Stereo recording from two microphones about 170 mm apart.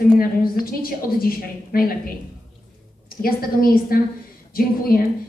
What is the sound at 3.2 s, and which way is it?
A woman's voice, 60° left (ahead or behind).